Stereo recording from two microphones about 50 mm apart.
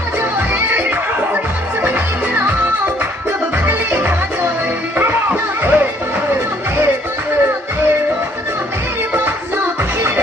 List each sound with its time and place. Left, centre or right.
0.7 s neigh: right
1.9 s music: right
3.6 s music: right